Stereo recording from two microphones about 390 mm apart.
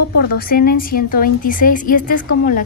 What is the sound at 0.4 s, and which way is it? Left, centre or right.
A woman's voice, left.